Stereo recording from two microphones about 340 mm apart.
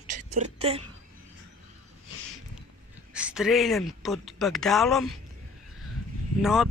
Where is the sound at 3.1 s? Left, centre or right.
Centre.